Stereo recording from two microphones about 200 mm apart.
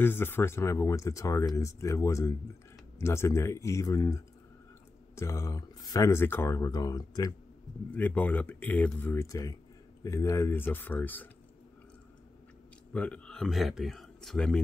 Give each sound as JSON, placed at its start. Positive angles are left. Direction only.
{"t": 0.0, "sound": "speech", "side_deg": 10}
{"t": 7.9, "sound": "speech", "side_deg": 5}
{"t": 12.9, "sound": "speech", "side_deg": 5}